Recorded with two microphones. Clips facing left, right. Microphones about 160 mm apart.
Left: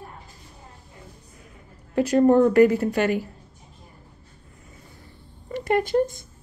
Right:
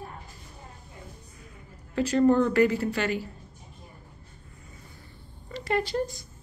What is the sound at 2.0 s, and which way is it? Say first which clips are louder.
A woman's voice: left 4 dB; 50° left (ahead or behind).